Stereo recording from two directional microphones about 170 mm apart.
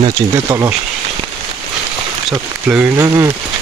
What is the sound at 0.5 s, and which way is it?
Speech, 20° right (ahead or behind).